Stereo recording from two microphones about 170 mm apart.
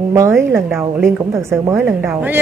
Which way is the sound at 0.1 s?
15° right (ahead or behind).